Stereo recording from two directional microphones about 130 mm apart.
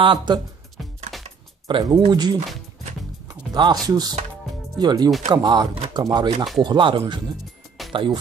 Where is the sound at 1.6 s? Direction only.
35° right (ahead or behind).